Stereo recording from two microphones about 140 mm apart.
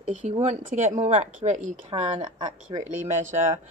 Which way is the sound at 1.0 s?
50° right (ahead or behind).